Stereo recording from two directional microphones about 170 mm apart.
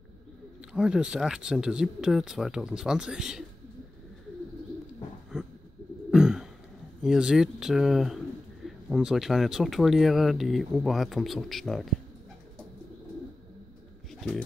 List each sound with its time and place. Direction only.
0.6 s speech: 5° right (ahead or behind)
5.3 s a sound: 5° right (ahead or behind)
7.0 s speech: 5° right (ahead or behind)